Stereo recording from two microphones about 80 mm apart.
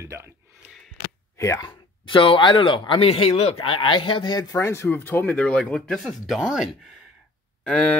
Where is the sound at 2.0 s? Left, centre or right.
Left.